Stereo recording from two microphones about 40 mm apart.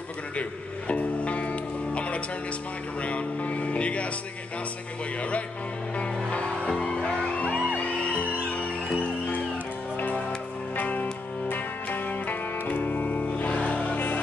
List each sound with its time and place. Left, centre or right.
0.4 s music: left
5.9 s music: left
7.8 s music: left
10.8 s music: left